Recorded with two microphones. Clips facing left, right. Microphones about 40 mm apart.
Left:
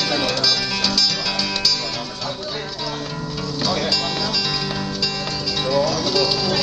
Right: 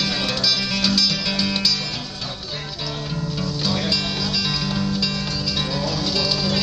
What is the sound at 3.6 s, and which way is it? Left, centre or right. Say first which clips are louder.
Music: left 3 dB; centre.